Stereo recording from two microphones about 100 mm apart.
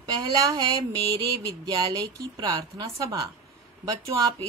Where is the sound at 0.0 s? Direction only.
40° right (ahead or behind).